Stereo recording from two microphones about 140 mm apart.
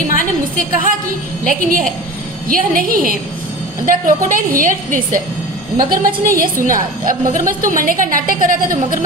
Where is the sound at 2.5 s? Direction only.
90° right.